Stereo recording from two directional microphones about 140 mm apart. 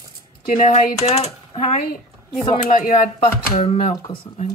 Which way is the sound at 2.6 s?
80° left.